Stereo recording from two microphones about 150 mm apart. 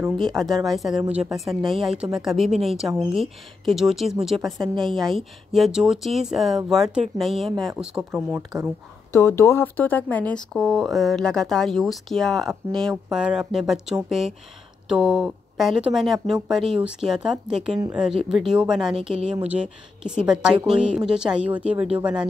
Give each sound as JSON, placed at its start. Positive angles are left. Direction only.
{"t": 0.2, "sound": "speech", "side_deg": 0}
{"t": 9.1, "sound": "speech", "side_deg": 15}